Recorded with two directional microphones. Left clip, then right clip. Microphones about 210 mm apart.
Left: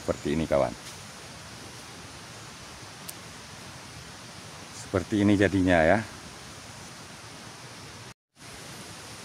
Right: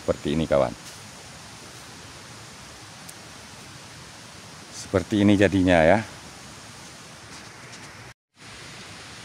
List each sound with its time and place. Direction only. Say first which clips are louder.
0.0 s speech: right 4 dB; 35° right (ahead or behind)
4.9 s speech: right 4 dB; 45° right (ahead or behind)